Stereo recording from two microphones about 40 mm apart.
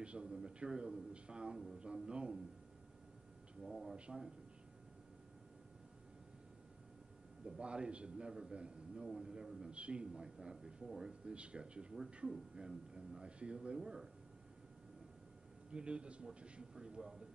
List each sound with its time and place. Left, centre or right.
0.0 s a man's voice: right
3.6 s speech: centre
3.9 s a man's voice: right
7.4 s a man's voice: right
9.7 s a man's voice: right
11.3 s a man's voice: right
15.7 s a man's voice: right
16.7 s speech: centre